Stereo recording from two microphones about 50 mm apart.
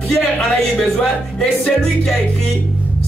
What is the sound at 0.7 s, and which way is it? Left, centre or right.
Speech, left.